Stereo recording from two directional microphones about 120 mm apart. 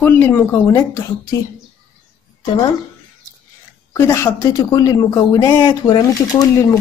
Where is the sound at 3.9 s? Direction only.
20° left (ahead or behind).